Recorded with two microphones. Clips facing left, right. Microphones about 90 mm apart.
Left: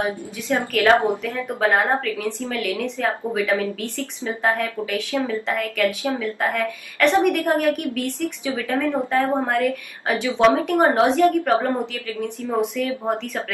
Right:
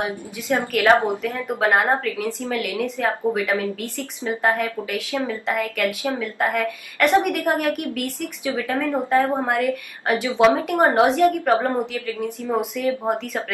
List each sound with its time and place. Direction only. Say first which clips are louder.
0.0 s a woman's voice: left 2 dB; 15° right (ahead or behind)
4.4 s a woman's voice: even; 5° right (ahead or behind)
8.5 s a woman's voice: right 1 dB; 15° right (ahead or behind)